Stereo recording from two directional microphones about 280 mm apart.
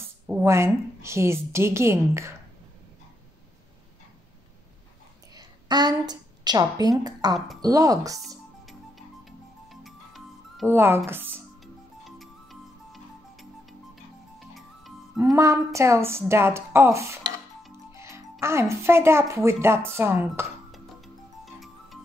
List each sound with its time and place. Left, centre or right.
0.3 s a woman's voice: centre
5.3 s a woman's voice: centre
9.7 s music: centre
15.1 s a woman's voice: centre
21.5 s music: centre